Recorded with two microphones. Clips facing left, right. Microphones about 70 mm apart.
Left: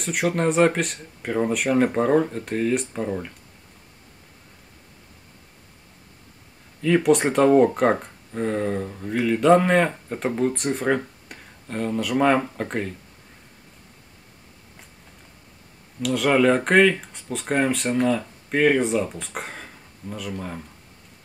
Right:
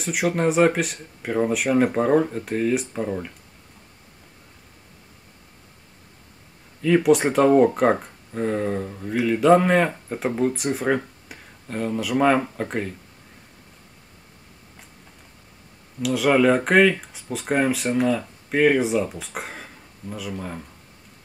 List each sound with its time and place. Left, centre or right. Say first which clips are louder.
0.0 s speech: right 1 dB; centre
6.8 s speech: right 1 dB; centre
16.0 s speech: right 1 dB; centre